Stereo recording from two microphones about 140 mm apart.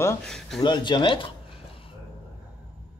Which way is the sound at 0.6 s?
30° left (ahead or behind).